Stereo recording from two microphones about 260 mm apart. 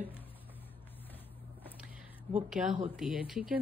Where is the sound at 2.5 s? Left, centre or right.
Centre.